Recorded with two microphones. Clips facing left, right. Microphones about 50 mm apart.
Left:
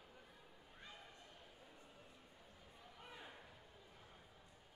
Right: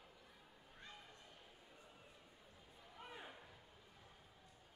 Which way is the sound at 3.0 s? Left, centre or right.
Centre.